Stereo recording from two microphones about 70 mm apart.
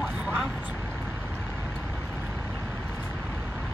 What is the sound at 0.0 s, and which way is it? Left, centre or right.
Vehicle, centre.